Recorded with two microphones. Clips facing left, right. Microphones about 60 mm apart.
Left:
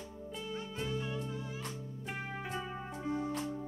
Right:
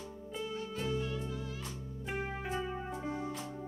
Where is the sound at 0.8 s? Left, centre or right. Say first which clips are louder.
Right 2 dB; centre.